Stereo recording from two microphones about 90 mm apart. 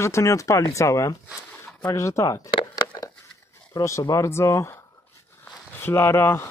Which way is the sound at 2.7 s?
45° left (ahead or behind).